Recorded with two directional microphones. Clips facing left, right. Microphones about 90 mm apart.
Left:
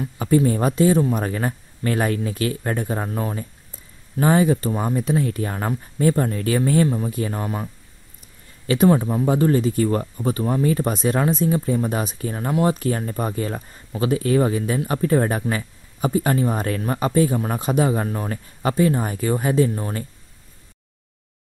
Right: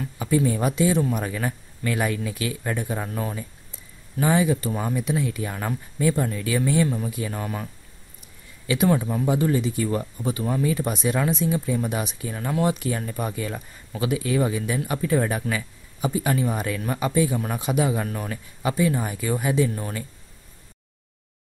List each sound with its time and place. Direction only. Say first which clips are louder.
0.2 s speech: left 4 dB; 45° left (ahead or behind)
4.2 s speech: left 4 dB; 45° left (ahead or behind)
8.8 s speech: left 4 dB; 30° left (ahead or behind)
18.0 s speech: left 4 dB; 30° left (ahead or behind)
18.6 s speech: left 4 dB; 45° left (ahead or behind)